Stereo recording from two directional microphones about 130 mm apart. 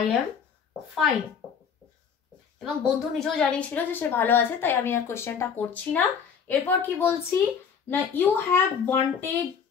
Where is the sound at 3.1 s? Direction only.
5° left (ahead or behind).